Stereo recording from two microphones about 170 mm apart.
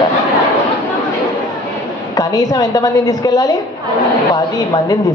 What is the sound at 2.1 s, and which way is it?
A man's voice, 20° left (ahead or behind).